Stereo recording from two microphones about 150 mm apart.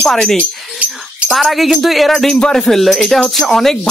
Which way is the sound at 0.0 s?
5° left (ahead or behind).